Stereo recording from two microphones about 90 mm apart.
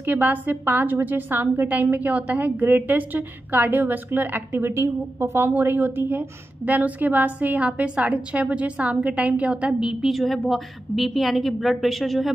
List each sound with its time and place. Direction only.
0.0 s a woman's voice: 20° right (ahead or behind); by 12.4 s centre (ahead or behind)